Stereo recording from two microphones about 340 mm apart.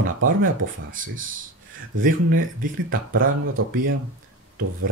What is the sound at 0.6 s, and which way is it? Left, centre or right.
Speech, right.